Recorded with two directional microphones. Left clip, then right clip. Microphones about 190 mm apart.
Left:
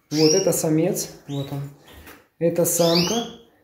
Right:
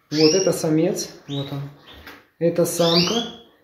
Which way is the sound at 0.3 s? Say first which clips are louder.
Right 1 dB; 5° left (ahead or behind).